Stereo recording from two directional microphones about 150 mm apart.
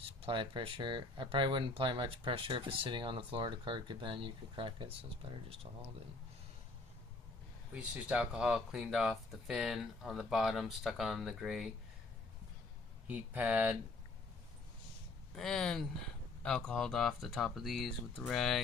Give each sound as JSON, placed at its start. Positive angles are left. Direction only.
{"t": 0.2, "sound": "speech", "side_deg": -35}
{"t": 7.7, "sound": "speech", "side_deg": -5}
{"t": 13.0, "sound": "speech", "side_deg": -10}
{"t": 15.3, "sound": "speech", "side_deg": 5}